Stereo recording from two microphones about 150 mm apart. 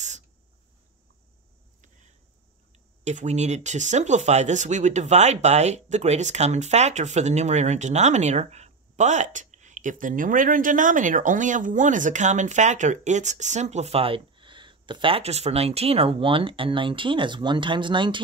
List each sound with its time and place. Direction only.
3.0 s speech: 50° right (ahead or behind); by 18.2 s 30° right (ahead or behind)